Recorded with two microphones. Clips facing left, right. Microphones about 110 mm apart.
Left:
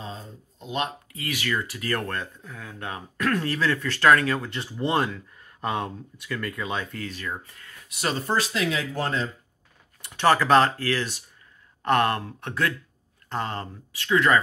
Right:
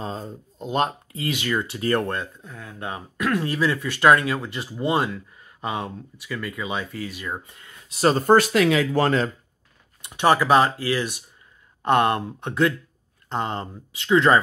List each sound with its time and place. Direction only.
0.0 s speech: 40° right (ahead or behind)
1.2 s speech: 25° right (ahead or behind)
4.4 s speech: 5° right (ahead or behind); by 7.8 s 20° right (ahead or behind)
7.9 s speech: 35° right (ahead or behind)
8.3 s speech: 60° right (ahead or behind); by 9.3 s 80° right
10.0 s speech: 15° right (ahead or behind)